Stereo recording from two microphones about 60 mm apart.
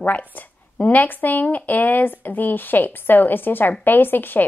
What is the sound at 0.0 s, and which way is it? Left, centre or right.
Speech, left.